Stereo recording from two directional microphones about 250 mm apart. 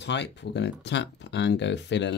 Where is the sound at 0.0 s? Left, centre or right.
Left.